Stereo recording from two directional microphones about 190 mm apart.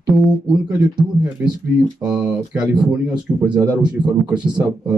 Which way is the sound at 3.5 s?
20° right (ahead or behind).